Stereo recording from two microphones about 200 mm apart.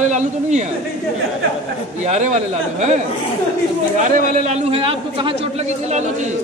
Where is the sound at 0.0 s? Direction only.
35° right (ahead or behind).